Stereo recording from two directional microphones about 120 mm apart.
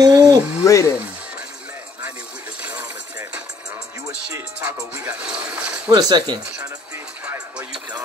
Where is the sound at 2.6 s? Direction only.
15° right (ahead or behind).